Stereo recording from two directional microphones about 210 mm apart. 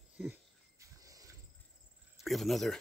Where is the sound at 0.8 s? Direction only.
15° right (ahead or behind).